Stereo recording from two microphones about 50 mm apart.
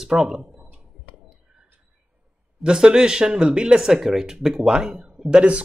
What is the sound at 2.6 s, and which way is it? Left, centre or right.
Speech, centre.